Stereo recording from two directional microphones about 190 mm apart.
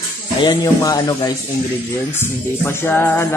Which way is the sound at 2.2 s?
10° left (ahead or behind).